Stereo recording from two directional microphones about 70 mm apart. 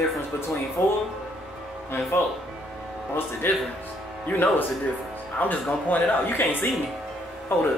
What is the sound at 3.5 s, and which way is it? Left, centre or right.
A man's voice, left.